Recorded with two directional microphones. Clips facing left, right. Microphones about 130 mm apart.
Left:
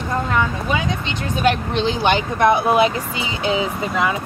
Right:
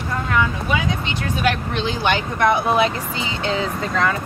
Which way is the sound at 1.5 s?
20° left (ahead or behind).